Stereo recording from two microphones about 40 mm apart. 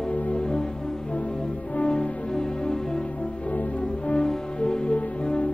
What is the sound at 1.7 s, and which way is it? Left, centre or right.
Music, left.